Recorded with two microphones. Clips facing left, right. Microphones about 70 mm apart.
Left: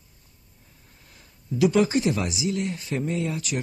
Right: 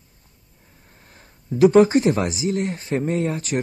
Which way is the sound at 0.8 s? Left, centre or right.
Right.